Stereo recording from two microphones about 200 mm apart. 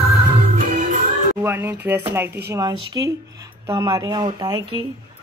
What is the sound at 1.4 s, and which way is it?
A woman's voice, 10° right (ahead or behind).